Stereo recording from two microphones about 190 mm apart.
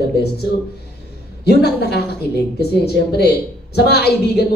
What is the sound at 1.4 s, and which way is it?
A woman's voice, 60° left (ahead or behind).